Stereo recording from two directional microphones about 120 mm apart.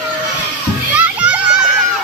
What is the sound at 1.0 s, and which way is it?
Children playing, 10° right (ahead or behind).